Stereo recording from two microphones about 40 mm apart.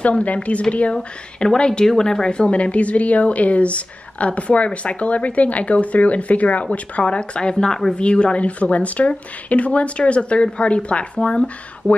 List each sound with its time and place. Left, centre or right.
0.0 s speech: left